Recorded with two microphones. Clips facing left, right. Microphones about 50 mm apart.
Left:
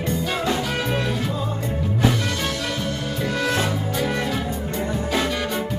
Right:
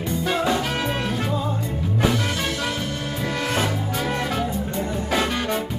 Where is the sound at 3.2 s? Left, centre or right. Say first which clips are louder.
Left 1 dB; right.